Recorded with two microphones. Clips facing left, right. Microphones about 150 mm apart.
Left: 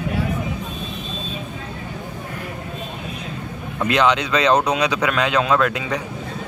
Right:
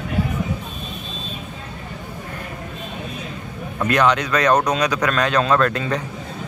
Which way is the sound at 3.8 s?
10° left (ahead or behind).